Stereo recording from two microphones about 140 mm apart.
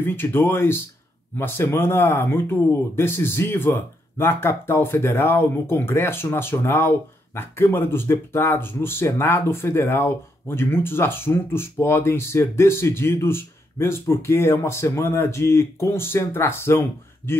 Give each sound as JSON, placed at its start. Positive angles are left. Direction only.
{"t": 0.0, "sound": "speech", "side_deg": 15}